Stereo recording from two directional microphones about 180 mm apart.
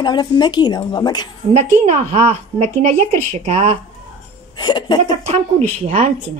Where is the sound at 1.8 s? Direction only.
35° right (ahead or behind).